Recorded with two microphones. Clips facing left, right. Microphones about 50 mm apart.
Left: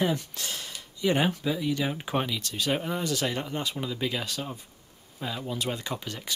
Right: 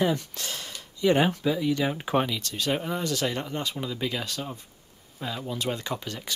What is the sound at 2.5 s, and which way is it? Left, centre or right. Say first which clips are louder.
Speech: left 1 dB; centre.